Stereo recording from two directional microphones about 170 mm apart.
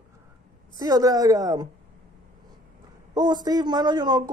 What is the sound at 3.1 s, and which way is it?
Speech, 25° right (ahead or behind).